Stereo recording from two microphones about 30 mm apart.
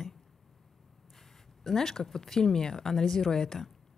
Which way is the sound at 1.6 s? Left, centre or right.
Centre.